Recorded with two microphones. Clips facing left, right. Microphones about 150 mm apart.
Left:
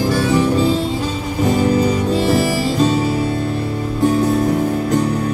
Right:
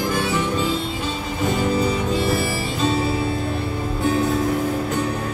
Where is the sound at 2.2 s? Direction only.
40° left (ahead or behind).